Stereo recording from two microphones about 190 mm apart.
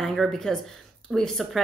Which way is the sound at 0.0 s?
Centre (ahead or behind).